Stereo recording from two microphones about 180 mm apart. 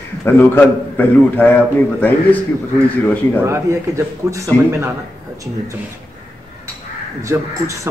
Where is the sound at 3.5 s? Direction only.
15° right (ahead or behind).